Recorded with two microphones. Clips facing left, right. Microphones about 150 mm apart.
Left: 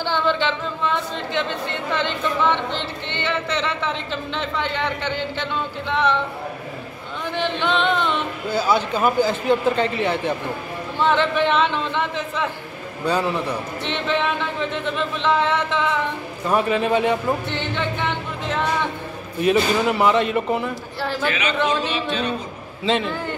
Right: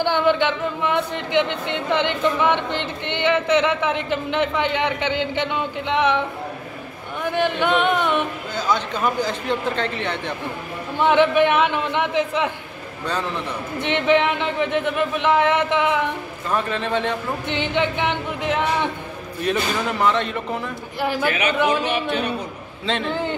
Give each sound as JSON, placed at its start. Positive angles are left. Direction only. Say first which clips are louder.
{"t": 0.0, "sound": "speech", "louder": "right 3 dB", "side_deg": -15}
{"t": 7.2, "sound": "speech", "louder": "right 3 dB", "side_deg": -10}
{"t": 8.5, "sound": "a man's voice", "louder": "left 3 dB", "side_deg": 10}
{"t": 11.0, "sound": "speech", "louder": "right 3 dB", "side_deg": -15}
{"t": 13.9, "sound": "speech", "louder": "right 5 dB", "side_deg": -15}
{"t": 16.4, "sound": "a man's voice", "louder": "left 4 dB", "side_deg": 10}
{"t": 17.5, "sound": "speech", "louder": "right 3 dB", "side_deg": -15}
{"t": 19.4, "sound": "a man's voice", "louder": "left 5 dB", "side_deg": 5}
{"t": 21.0, "sound": "speech", "louder": "right 2 dB", "side_deg": -10}
{"t": 22.9, "sound": "a man's voice", "louder": "left 4 dB", "side_deg": 0}